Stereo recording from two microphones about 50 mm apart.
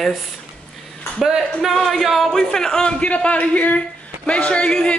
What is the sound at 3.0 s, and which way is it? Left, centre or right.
A woman's voice, left.